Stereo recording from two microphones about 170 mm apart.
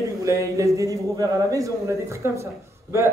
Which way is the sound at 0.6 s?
20° right (ahead or behind).